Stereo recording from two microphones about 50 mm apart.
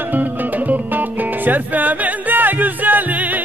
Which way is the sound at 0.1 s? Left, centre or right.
Right.